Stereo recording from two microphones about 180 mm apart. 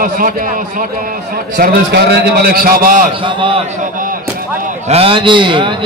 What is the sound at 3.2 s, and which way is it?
Speech, 30° right (ahead or behind).